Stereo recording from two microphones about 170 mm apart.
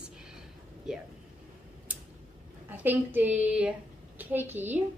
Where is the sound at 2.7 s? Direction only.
10° right (ahead or behind).